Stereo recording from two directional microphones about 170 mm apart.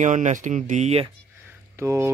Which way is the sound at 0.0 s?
45° right (ahead or behind).